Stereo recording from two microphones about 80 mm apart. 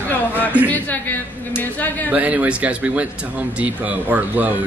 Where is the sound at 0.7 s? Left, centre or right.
Left.